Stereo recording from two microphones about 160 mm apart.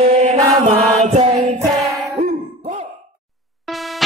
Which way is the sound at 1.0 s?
45° right (ahead or behind).